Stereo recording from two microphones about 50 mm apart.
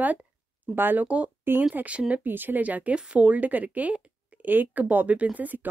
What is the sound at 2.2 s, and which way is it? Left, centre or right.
Speech, right.